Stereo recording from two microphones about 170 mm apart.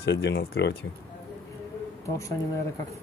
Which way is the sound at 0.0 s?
85° left.